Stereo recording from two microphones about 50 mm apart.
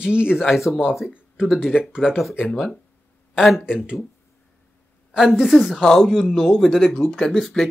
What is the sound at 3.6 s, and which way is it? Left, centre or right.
Speech, centre.